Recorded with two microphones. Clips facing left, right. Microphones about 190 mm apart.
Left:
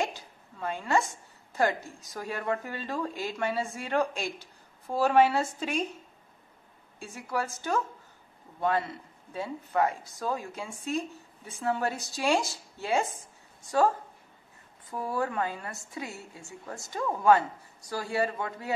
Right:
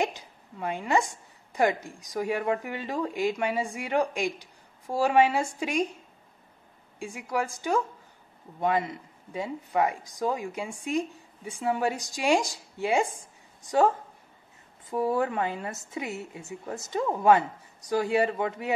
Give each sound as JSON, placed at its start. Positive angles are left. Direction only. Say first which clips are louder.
{"t": 0.0, "sound": "a woman's voice", "louder": "right 3 dB", "side_deg": -15}
{"t": 7.0, "sound": "a woman's voice", "louder": "right 3 dB", "side_deg": -15}
{"t": 14.9, "sound": "a woman's voice", "louder": "right 5 dB", "side_deg": -20}